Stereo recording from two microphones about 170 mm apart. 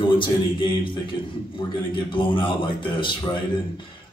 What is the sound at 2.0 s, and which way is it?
Speech, 30° left (ahead or behind).